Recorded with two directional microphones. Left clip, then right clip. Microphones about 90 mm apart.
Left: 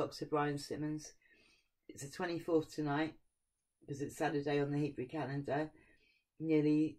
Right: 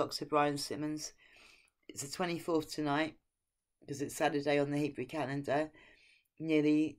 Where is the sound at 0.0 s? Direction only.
15° right (ahead or behind).